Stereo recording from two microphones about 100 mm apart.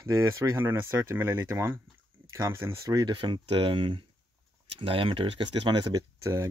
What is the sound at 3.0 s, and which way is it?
Speech, 50° right (ahead or behind).